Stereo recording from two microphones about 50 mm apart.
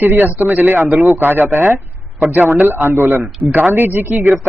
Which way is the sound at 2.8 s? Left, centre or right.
Right.